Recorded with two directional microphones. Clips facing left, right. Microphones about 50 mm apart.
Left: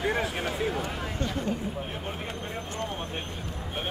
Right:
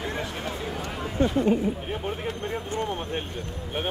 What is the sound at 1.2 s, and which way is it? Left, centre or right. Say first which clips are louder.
Speech: right 11 dB; centre.